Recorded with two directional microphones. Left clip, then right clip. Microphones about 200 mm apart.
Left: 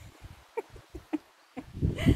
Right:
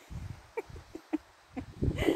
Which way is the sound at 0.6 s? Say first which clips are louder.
Left 2 dB; centre (ahead or behind).